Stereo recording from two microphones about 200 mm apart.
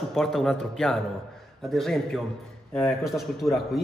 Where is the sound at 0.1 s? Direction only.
Centre (ahead or behind).